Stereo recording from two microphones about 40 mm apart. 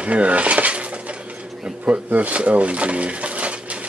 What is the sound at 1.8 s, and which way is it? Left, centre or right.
Speech, right.